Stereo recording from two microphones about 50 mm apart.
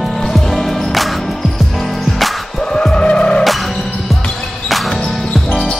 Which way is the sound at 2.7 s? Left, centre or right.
Centre.